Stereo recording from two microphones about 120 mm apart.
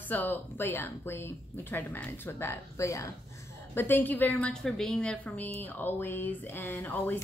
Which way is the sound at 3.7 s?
15° left (ahead or behind).